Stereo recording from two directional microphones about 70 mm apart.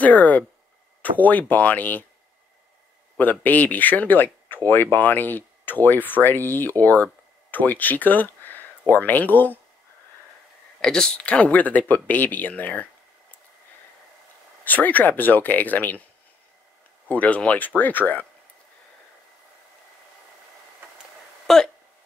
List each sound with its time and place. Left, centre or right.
0.0 s speech: left
3.2 s speech: left
10.8 s speech: centre
14.6 s speech: left
17.1 s speech: left
21.5 s a sound: centre